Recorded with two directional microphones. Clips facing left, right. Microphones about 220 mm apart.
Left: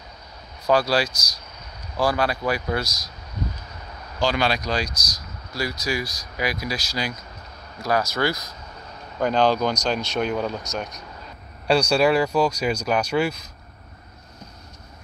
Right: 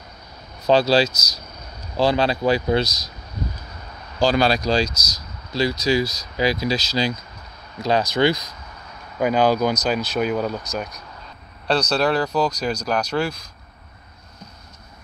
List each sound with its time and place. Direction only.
0.7 s speech: 25° right (ahead or behind)
4.2 s speech: 35° right (ahead or behind); by 11.1 s centre (ahead or behind)
11.6 s speech: 10° left (ahead or behind)